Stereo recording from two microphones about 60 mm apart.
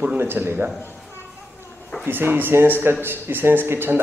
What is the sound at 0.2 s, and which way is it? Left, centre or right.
Speech, right.